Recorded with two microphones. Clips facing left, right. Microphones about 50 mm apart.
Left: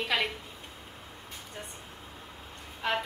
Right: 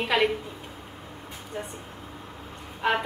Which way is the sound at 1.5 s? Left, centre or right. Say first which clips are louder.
Right 9 dB; centre.